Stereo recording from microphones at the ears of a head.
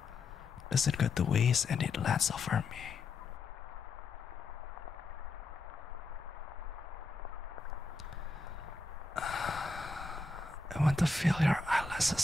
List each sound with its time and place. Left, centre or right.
0.7 s speech: left
9.1 s snort: left
10.7 s speech: centre